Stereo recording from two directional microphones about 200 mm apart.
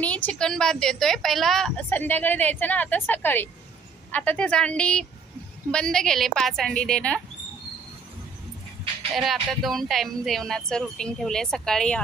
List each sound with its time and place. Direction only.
0.0 s a woman's voice: 5° left (ahead or behind)
9.1 s speech: centre (ahead or behind)